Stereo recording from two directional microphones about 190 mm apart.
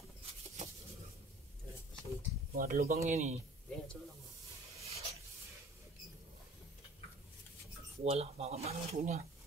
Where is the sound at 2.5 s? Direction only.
50° right (ahead or behind).